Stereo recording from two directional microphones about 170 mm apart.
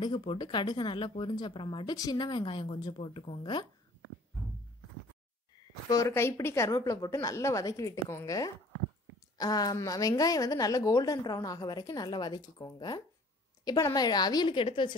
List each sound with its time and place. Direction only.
0.0 s speech: 30° left (ahead or behind)
5.9 s a woman's voice: 15° left (ahead or behind)